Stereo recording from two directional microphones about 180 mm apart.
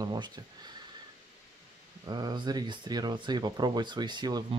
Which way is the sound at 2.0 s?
25° right (ahead or behind).